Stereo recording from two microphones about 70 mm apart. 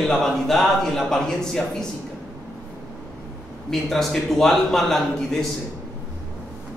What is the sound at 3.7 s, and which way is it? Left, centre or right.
A man's voice, centre.